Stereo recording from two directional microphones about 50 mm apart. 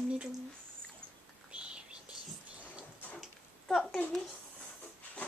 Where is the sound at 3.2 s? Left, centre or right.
Centre.